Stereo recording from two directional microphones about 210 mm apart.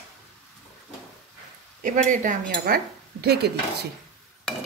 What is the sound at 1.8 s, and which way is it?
Speech, 40° right (ahead or behind).